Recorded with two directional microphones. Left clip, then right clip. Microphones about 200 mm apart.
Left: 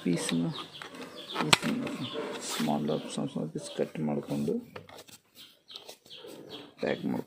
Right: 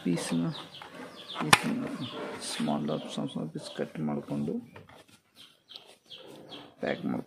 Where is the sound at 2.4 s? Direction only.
5° right (ahead or behind).